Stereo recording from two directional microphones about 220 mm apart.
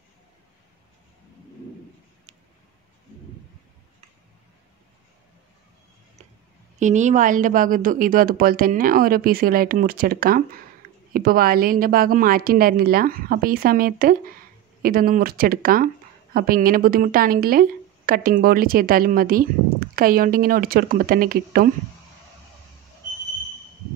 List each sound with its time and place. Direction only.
6.8 s a woman's voice: 35° right (ahead or behind)